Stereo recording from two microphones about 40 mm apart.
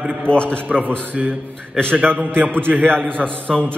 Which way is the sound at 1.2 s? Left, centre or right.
Centre.